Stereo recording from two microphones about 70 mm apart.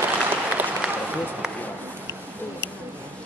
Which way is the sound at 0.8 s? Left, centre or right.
Centre.